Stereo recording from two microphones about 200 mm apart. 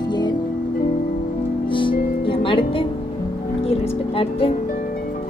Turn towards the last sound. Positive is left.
turn(degrees=30)  # may be behind; listen again after turning